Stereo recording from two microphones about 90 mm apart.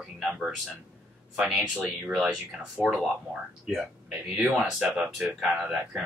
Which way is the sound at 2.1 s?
Centre (ahead or behind).